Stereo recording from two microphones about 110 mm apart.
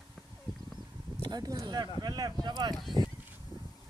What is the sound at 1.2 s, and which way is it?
Speech, 40° right (ahead or behind).